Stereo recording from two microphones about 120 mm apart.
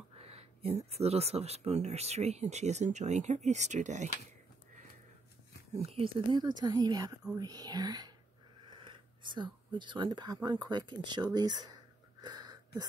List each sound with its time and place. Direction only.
0.1 s speech: 60° right (ahead or behind); by 4.1 s 85° right
5.8 s speech: 55° right (ahead or behind); by 11.7 s 35° right (ahead or behind)
12.2 s a sound: 35° right (ahead or behind)